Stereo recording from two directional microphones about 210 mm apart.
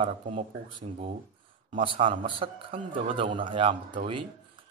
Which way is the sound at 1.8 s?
25° right (ahead or behind).